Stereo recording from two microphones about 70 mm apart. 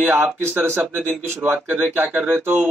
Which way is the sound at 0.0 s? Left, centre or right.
Right.